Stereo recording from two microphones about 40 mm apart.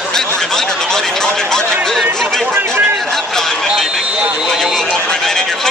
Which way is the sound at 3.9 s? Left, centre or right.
Centre.